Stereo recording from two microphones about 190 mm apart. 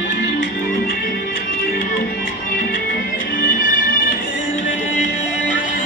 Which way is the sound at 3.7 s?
45° left (ahead or behind).